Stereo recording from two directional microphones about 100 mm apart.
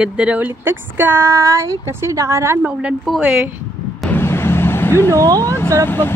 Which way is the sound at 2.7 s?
10° right (ahead or behind).